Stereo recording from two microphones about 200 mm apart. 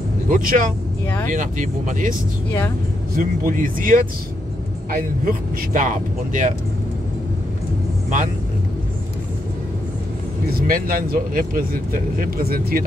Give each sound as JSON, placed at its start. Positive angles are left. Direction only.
{"t": 0.3, "sound": "speech", "side_deg": -40}
{"t": 3.2, "sound": "speech", "side_deg": -45}
{"t": 10.7, "sound": "speech", "side_deg": -45}